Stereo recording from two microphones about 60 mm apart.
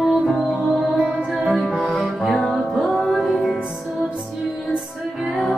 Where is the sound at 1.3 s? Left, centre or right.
Centre.